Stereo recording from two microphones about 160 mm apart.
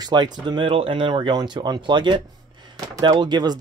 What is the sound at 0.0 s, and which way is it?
Speech, 25° right (ahead or behind).